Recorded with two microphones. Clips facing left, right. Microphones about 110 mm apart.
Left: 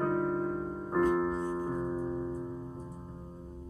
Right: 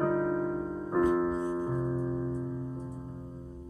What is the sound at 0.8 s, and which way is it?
Music, 20° right (ahead or behind).